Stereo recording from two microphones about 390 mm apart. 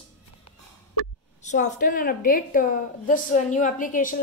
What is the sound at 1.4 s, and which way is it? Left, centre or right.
A woman's voice, centre.